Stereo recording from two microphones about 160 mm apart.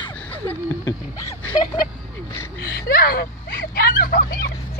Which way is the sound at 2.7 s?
70° left (ahead or behind).